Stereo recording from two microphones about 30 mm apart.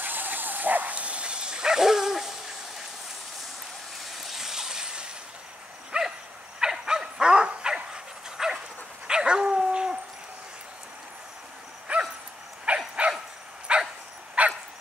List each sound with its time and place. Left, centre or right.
0.0 s vehicle: right
0.9 s dog: right; by 2.3 s centre
4.0 s train: centre; by 5.1 s right
5.9 s dog: right
11.9 s dog: right
12.6 s bow-wow: right
13.7 s dog: right
14.4 s dog: right